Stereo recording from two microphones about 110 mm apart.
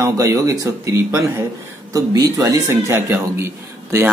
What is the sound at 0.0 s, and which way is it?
Speech, 30° right (ahead or behind).